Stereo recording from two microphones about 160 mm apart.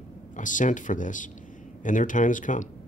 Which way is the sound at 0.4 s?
55° left (ahead or behind).